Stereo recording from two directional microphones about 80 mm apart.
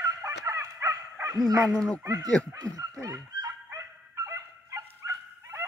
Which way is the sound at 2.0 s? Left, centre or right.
Right.